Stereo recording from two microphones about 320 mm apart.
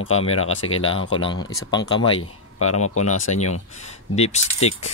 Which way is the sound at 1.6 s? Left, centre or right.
Centre.